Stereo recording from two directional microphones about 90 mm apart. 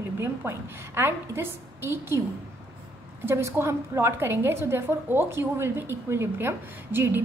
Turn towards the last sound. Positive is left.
turn(degrees=-25)  # may be behind; listen again after turning